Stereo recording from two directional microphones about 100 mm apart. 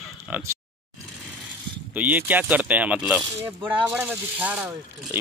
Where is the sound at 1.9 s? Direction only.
15° right (ahead or behind).